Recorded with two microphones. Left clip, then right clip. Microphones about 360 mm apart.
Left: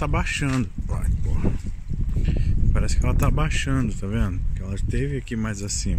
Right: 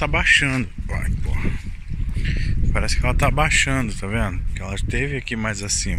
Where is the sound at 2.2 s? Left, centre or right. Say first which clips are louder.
Right 4 dB; centre.